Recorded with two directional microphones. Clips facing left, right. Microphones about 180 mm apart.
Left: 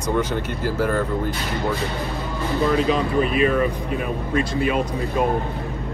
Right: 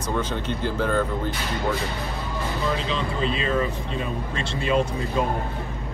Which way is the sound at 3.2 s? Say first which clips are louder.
Left 5 dB; 25° right (ahead or behind).